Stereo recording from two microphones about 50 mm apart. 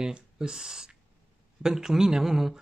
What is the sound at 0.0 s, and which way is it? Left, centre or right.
Speech, centre.